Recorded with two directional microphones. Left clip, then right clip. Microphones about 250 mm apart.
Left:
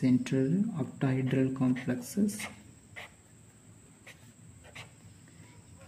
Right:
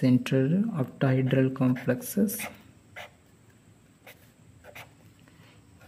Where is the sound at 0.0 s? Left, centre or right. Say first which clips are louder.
Right 4 dB; right.